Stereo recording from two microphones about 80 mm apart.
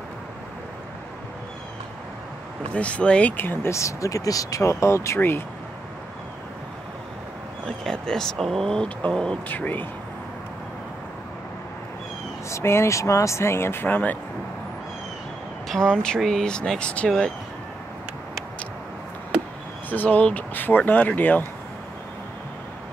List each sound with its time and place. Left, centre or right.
2.7 s speech: centre
3.7 s speech: left
7.6 s speech: centre
9.5 s speech: left
12.4 s speech: left
15.7 s speech: centre
19.9 s speech: left